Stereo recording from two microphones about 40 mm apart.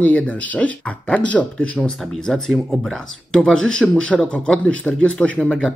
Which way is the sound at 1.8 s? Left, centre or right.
Centre.